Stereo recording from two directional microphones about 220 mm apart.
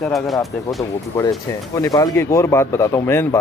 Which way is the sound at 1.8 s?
15° left (ahead or behind).